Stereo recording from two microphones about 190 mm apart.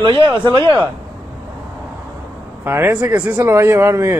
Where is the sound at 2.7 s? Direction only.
10° right (ahead or behind).